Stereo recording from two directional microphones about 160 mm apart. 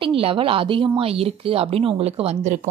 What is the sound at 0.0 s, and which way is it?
Speech, 35° right (ahead or behind).